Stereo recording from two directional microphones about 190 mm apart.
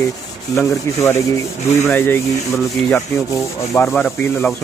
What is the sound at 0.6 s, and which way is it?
Rub, 15° left (ahead or behind).